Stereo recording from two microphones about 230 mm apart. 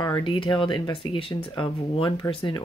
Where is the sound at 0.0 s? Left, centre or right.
Centre.